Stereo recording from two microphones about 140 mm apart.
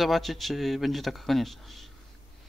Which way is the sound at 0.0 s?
Centre (ahead or behind).